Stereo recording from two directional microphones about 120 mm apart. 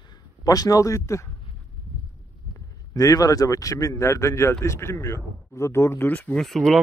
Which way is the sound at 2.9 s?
30° left (ahead or behind).